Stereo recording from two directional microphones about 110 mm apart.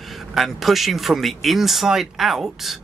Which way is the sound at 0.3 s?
Centre (ahead or behind).